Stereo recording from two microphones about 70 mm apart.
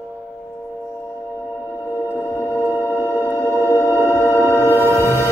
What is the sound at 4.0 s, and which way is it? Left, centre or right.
Music, left.